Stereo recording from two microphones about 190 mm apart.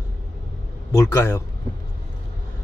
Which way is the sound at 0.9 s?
15° left (ahead or behind).